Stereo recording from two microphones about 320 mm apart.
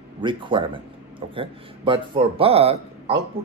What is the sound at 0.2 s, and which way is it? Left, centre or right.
Speech, centre.